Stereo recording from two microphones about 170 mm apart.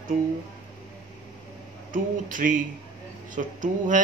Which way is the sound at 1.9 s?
50° right (ahead or behind).